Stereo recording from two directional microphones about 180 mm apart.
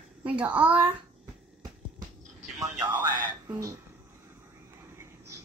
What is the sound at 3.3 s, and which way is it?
Music, 15° right (ahead or behind).